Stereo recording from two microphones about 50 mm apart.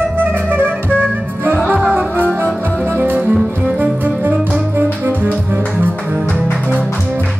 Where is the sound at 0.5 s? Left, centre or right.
Right.